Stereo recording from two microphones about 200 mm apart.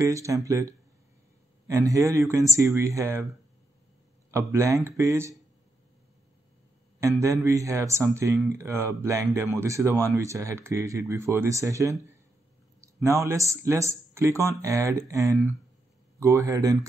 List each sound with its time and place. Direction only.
0.1 s speech: 15° right (ahead or behind)
4.3 s speech: 15° right (ahead or behind)
7.0 s a man's voice: 15° right (ahead or behind)